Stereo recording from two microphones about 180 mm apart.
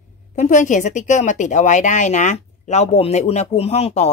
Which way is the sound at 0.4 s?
45° left (ahead or behind).